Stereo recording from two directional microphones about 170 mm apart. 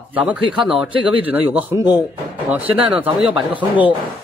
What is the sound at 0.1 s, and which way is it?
Speech, 10° right (ahead or behind).